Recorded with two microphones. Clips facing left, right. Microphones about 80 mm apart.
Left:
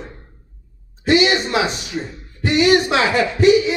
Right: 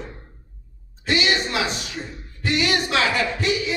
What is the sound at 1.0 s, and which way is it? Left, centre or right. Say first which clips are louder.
A woman's voice: left 7 dB; left.